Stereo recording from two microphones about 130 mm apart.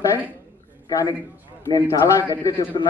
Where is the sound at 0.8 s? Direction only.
30° left (ahead or behind).